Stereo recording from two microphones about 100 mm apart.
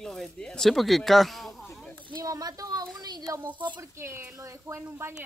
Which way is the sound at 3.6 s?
50° right (ahead or behind).